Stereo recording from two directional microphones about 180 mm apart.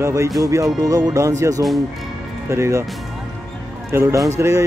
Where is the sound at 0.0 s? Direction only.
15° right (ahead or behind).